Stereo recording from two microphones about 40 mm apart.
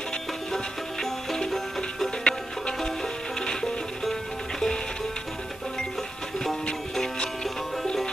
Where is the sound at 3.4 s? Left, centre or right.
Centre.